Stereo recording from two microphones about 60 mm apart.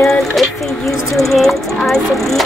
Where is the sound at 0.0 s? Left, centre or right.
Centre.